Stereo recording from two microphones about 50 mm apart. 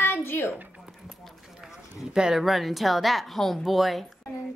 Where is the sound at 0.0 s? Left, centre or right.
Left.